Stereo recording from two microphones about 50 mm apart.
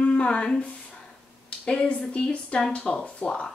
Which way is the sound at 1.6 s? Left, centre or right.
Left.